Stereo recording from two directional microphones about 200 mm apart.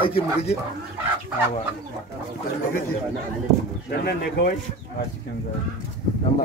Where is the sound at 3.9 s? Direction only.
50° left (ahead or behind).